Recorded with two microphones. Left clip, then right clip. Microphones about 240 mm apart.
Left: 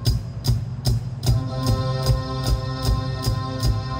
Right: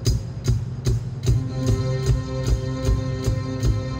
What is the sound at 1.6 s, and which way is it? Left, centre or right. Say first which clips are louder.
Music: left 1 dB; left.